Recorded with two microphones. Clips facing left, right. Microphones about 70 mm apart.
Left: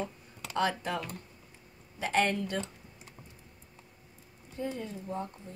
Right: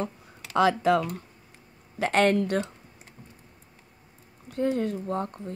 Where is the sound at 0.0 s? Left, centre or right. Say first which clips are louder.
Right 5 dB; right.